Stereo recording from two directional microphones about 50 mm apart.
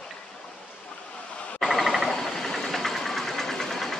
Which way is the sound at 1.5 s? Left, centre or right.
Centre.